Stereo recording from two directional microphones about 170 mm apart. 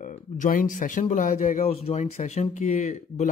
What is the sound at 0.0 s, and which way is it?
Speech, 50° left (ahead or behind).